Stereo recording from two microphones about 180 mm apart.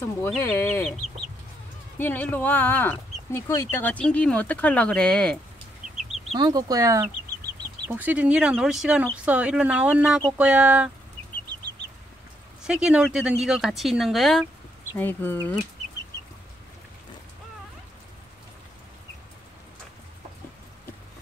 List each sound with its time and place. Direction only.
0.0 s speech: 15° left (ahead or behind)
2.0 s speech: 10° left (ahead or behind)
6.3 s speech: 20° right (ahead or behind)
12.6 s speech: 5° right (ahead or behind)
15.0 s speech: 10° left (ahead or behind)